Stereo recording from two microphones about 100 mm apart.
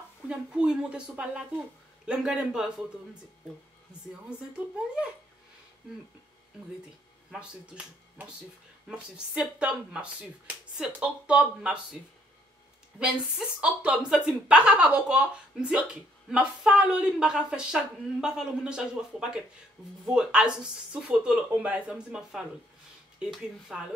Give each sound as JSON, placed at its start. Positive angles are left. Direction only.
{"t": 0.3, "sound": "a woman's voice", "side_deg": -10}
{"t": 4.6, "sound": "a woman's voice", "side_deg": -15}
{"t": 7.2, "sound": "a woman's voice", "side_deg": -10}
{"t": 13.0, "sound": "a woman's voice", "side_deg": -10}